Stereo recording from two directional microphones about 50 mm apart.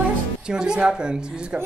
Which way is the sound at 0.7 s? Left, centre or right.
Centre.